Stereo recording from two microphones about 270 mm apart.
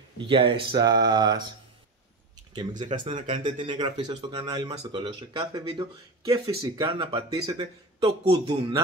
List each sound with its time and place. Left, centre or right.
0.2 s speech: centre
2.8 s speech: centre